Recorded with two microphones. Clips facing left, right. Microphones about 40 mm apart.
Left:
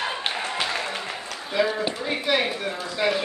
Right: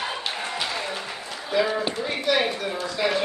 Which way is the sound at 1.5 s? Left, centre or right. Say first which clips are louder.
Right 1 dB; centre.